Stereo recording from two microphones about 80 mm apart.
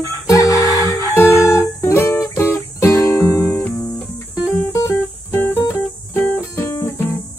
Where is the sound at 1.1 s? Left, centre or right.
Left.